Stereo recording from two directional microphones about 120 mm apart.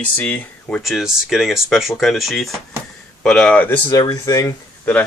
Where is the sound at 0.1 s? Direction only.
15° left (ahead or behind).